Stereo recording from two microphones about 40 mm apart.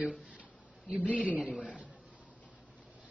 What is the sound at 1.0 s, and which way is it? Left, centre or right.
Speech, left.